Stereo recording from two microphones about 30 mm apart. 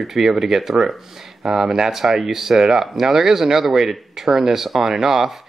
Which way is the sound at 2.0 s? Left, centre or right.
Centre.